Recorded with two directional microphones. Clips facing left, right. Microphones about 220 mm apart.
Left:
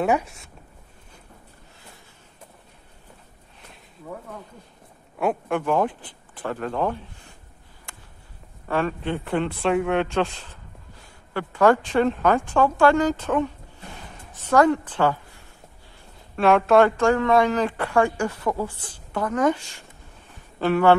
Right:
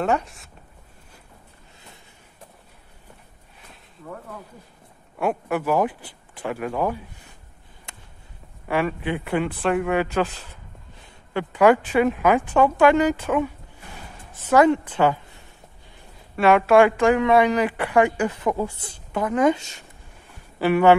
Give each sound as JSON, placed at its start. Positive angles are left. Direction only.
{"t": 0.0, "sound": "speech", "side_deg": 0}
{"t": 5.2, "sound": "speech", "side_deg": -5}
{"t": 7.9, "sound": "a sound", "side_deg": -20}
{"t": 8.6, "sound": "a woman's voice", "side_deg": -10}
{"t": 16.3, "sound": "speech", "side_deg": -5}